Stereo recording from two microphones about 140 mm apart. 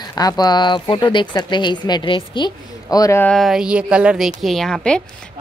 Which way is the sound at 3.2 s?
5° left (ahead or behind).